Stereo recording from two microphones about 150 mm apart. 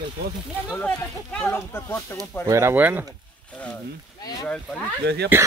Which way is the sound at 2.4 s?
20° right (ahead or behind).